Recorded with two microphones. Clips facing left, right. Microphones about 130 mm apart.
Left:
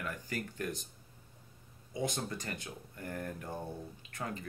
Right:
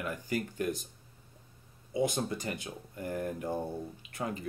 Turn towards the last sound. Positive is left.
turn(degrees=-10)  # may be behind; listen again after turning